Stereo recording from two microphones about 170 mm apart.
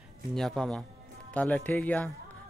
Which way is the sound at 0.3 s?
Centre (ahead or behind).